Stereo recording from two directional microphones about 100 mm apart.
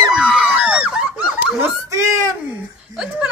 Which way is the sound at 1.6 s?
30° right (ahead or behind).